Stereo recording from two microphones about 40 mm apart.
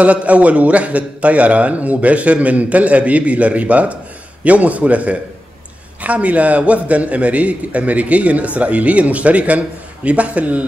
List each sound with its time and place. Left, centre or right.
0.0 s a man's voice: right